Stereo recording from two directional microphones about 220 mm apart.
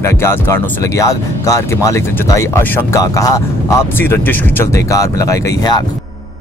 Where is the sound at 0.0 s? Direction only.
10° left (ahead or behind).